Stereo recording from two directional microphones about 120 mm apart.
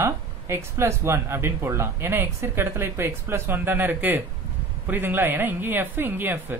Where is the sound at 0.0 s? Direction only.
20° right (ahead or behind).